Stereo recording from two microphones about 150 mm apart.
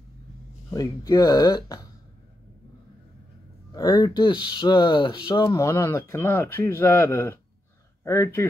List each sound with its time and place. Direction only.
0.7 s speech: 25° left (ahead or behind)
3.7 s speech: 25° left (ahead or behind)